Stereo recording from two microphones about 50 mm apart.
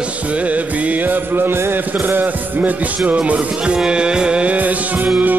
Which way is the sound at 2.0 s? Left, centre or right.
Right.